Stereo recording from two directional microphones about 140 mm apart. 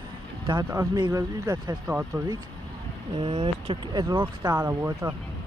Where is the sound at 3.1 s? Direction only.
50° right (ahead or behind).